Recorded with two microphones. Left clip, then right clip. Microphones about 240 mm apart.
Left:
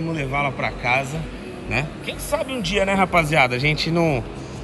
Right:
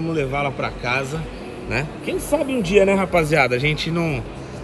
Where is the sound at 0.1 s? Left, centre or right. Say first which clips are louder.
Right 1 dB; left.